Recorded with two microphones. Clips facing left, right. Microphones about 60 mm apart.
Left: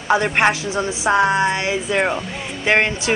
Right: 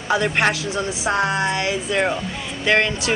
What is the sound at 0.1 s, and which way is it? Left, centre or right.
Speech, left.